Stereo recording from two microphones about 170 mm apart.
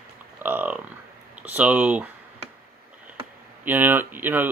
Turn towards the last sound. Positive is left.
turn(degrees=-10)  # may be behind; listen again after turning